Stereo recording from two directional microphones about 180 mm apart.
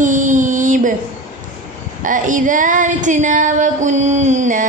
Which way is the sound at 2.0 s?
45° right (ahead or behind).